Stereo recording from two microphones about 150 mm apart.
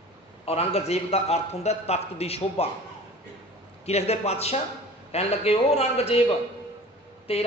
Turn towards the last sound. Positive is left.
turn(degrees=40)  # may be behind; listen again after turning